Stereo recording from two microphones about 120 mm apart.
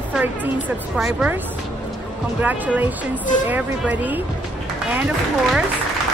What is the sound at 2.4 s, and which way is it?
Speech, 15° right (ahead or behind).